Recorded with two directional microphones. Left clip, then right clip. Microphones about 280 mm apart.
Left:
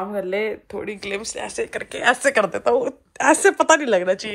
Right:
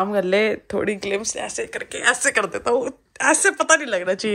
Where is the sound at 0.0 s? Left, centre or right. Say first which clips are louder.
Right 5 dB; right.